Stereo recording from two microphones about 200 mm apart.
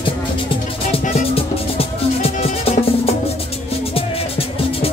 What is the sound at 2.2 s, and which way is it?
Music, 30° left (ahead or behind).